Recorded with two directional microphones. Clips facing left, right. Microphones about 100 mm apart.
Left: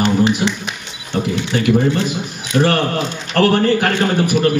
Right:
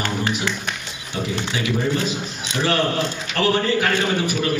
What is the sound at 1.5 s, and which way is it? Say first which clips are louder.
A man's voice: left 8 dB; 50° left (ahead or behind).